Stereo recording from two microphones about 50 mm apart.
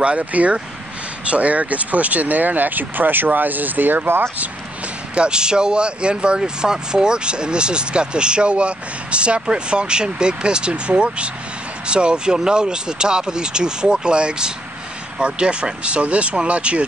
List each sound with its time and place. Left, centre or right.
0.0 s speech: right
5.1 s speech: centre